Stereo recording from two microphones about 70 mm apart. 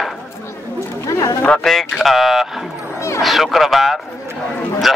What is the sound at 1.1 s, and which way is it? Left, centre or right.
Speech, left.